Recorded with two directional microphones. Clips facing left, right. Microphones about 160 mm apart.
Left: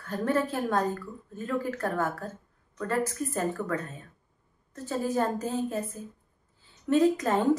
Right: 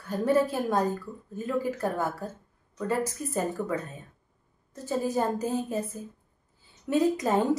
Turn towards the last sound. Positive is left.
turn(degrees=-10)  # may be behind; listen again after turning